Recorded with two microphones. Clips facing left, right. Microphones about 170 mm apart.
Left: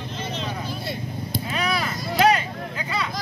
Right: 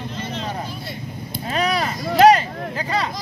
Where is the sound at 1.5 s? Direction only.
40° right (ahead or behind).